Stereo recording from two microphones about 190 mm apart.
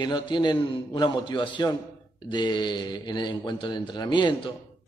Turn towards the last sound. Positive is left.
turn(degrees=25)  # may be behind; listen again after turning